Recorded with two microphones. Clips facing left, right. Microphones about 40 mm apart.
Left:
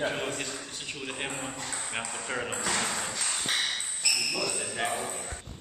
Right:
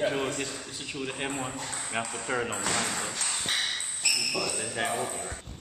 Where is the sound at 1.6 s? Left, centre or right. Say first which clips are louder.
Right 1 dB; centre.